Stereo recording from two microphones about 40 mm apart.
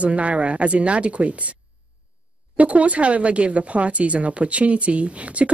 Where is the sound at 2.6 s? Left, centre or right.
Right.